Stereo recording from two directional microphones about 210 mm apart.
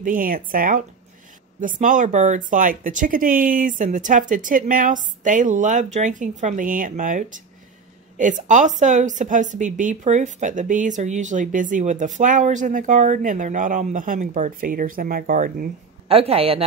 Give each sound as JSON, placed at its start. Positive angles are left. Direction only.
{"t": 0.0, "sound": "speech", "side_deg": -40}